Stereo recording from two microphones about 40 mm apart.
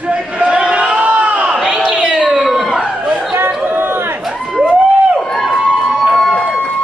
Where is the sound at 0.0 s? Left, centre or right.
Right.